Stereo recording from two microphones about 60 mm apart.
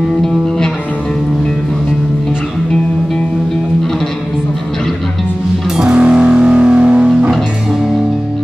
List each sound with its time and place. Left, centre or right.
5.8 s music: centre